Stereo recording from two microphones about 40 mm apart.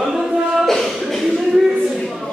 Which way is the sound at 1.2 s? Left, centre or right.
Centre.